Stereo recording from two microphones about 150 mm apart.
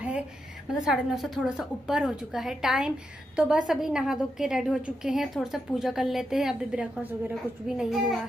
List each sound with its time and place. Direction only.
0.7 s a woman's voice: 5° right (ahead or behind)